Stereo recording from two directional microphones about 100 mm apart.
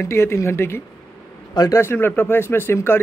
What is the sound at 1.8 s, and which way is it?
A man's voice, 25° left (ahead or behind).